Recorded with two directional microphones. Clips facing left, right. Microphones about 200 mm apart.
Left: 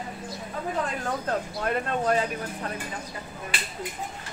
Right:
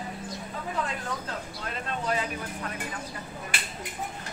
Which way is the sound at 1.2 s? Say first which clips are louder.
Left 8 dB; 55° left (ahead or behind).